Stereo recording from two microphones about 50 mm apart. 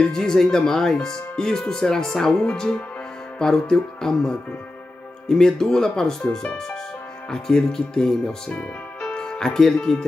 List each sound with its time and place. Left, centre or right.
0.0 s speech: centre